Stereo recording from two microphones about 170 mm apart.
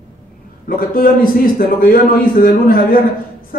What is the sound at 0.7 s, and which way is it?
Speech, 55° left (ahead or behind).